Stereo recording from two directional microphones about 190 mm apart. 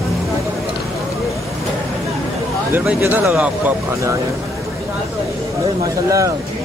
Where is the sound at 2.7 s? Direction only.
10° right (ahead or behind).